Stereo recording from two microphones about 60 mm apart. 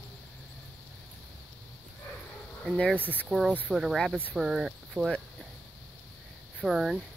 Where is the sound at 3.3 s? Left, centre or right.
Centre.